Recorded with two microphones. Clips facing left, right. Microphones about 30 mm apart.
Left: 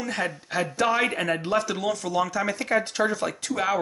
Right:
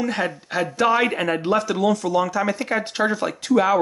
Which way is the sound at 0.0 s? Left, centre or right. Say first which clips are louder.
Right 5 dB; centre.